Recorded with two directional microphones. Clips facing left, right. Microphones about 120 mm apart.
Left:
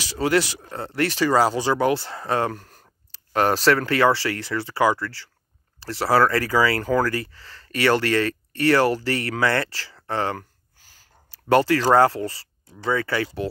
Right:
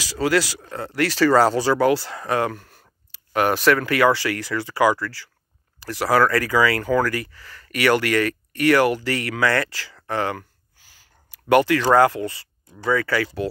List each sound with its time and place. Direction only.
0.0 s speech: 25° left (ahead or behind)